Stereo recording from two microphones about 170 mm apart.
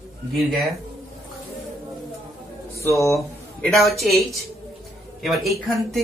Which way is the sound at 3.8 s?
Centre (ahead or behind).